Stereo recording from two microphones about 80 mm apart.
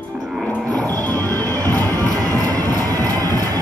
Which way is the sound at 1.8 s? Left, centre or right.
Right.